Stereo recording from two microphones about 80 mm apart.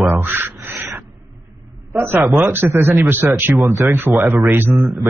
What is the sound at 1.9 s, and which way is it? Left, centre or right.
Speech, right.